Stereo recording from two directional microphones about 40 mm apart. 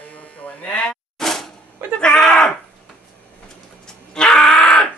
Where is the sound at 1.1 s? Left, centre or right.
Centre.